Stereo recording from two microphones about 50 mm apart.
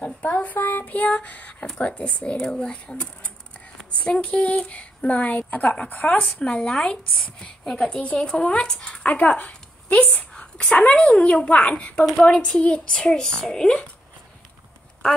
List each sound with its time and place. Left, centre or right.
0.0 s a sound: left
1.8 s a woman's voice: left
6.4 s a woman's voice: centre
9.0 s speech: left
9.5 s a sound: left
10.3 s a woman's voice: centre